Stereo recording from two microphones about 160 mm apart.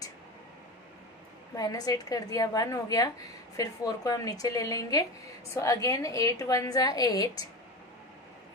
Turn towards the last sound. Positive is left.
turn(degrees=25)  # may be behind; listen again after turning